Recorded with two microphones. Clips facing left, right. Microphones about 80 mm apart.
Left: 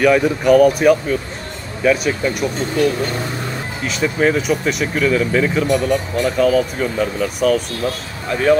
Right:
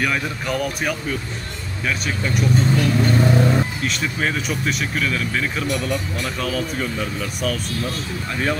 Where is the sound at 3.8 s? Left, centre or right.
Centre.